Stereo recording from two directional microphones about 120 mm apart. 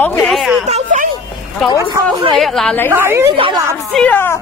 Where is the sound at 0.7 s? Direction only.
90° right.